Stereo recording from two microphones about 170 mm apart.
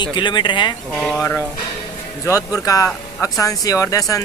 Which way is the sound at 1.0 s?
5° left (ahead or behind).